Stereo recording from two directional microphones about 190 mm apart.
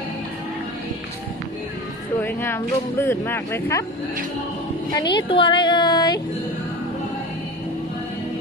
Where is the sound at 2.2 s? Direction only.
10° left (ahead or behind).